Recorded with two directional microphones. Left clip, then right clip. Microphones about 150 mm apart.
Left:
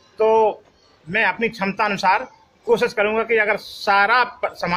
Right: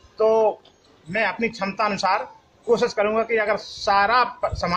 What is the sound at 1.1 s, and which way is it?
Speech, 40° left (ahead or behind).